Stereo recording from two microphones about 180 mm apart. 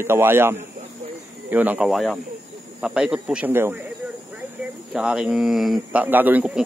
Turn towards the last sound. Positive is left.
turn(degrees=-10)  # may be behind; listen again after turning